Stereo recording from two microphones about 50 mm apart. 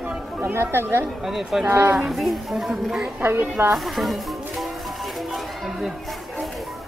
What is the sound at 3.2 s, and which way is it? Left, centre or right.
Speech, right.